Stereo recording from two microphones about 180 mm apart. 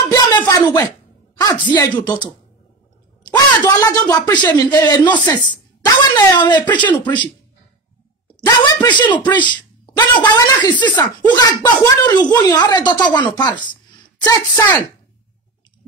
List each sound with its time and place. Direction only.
0.1 s a sound: 20° left (ahead or behind)
1.4 s a woman's voice: 25° left (ahead or behind)
3.3 s a woman's voice: 20° left (ahead or behind)
8.5 s a sound: 25° left (ahead or behind)
9.5 s a woman's voice: 25° left (ahead or behind)
14.2 s a woman's voice: 10° left (ahead or behind)